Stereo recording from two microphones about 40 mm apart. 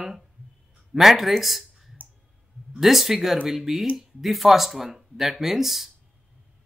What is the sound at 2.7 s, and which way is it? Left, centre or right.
Speech, centre.